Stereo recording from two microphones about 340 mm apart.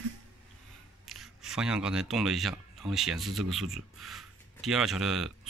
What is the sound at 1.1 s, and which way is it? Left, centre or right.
Speech, centre.